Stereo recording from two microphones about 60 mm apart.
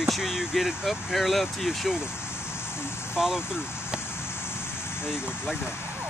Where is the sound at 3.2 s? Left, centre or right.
Centre.